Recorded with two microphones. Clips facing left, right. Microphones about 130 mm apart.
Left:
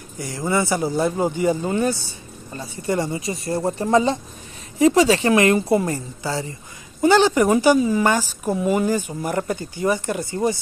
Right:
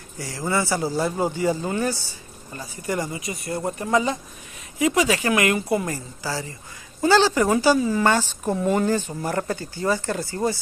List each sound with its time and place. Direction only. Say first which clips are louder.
0.2 s speech: left 3 dB; 20° left (ahead or behind)